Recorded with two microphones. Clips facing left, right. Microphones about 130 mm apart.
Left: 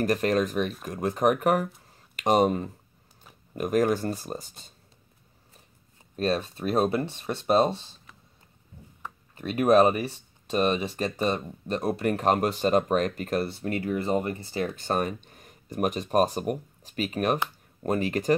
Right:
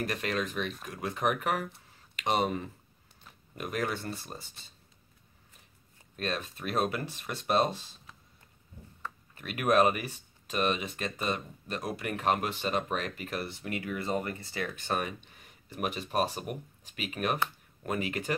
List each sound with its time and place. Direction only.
0.0 s speech: 40° left (ahead or behind)
1.9 s a sound: 45° left (ahead or behind)
3.5 s speech: 45° left (ahead or behind)
6.1 s speech: 35° left (ahead or behind)
9.0 s speech: 30° left (ahead or behind)
14.9 s speech: 40° left (ahead or behind)